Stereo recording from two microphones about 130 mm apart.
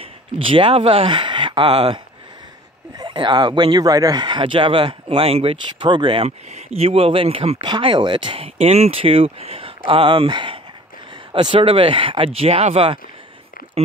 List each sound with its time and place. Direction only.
0.0 s speech: 45° right (ahead or behind)
3.0 s speech: 35° right (ahead or behind)
6.2 s speech: 55° right (ahead or behind)